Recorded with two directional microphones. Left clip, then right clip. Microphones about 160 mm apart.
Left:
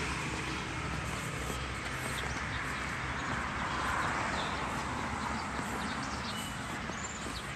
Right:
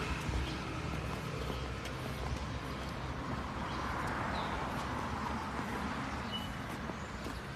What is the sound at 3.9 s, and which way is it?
Vehicle, 40° left (ahead or behind).